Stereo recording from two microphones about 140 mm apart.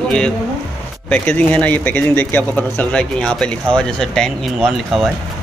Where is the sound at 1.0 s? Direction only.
10° left (ahead or behind).